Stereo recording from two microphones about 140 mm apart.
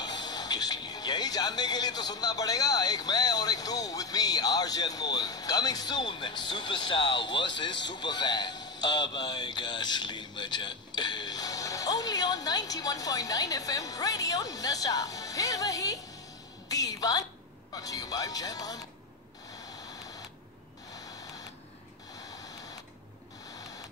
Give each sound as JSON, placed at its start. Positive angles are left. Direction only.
{"t": 0.0, "sound": "speech", "side_deg": 30}
{"t": 16.6, "sound": "music", "side_deg": 25}
{"t": 17.7, "sound": "speech", "side_deg": 25}